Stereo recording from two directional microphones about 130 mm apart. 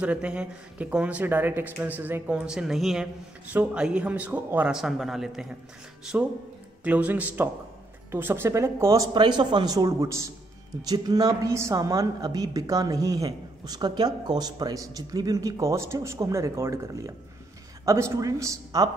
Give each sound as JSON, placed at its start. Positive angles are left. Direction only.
{"t": 0.0, "sound": "speech", "side_deg": -10}
{"t": 6.8, "sound": "a woman's voice", "side_deg": -10}